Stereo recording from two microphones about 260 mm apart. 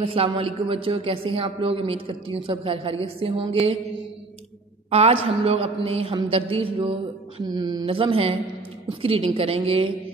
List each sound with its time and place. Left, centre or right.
0.0 s a woman's voice: right
4.9 s a woman's voice: right